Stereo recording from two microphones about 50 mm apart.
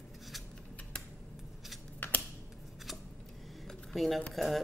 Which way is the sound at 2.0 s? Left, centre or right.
Left.